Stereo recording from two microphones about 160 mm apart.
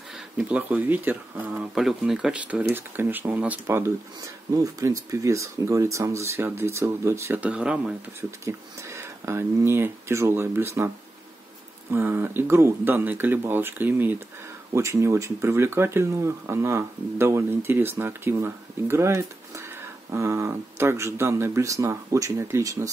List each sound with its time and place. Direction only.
0.4 s speech: 10° right (ahead or behind)
8.2 s speech: 15° right (ahead or behind)
11.9 s speech: 15° right (ahead or behind)